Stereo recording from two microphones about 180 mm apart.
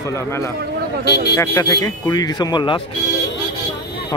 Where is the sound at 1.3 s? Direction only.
20° left (ahead or behind).